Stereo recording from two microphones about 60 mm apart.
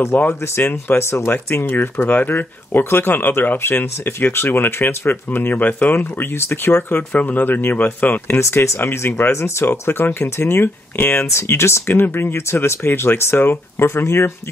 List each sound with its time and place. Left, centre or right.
0.1 s speech: left
7.1 s speech: left
8.4 s speech: left